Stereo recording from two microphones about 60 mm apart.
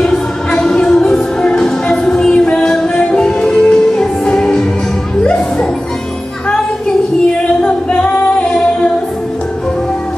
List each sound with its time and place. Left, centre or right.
0.0 s music: centre
7.6 s a capella: left